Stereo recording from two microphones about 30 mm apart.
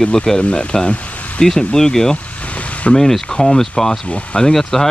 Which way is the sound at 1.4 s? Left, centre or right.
Centre.